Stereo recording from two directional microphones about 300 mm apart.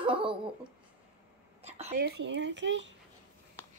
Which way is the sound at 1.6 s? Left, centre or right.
Right.